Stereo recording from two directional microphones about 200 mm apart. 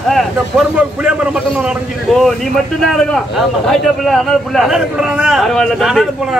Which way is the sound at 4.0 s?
Centre (ahead or behind).